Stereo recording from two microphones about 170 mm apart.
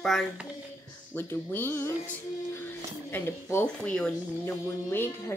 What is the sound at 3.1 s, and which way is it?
Speech, 15° left (ahead or behind).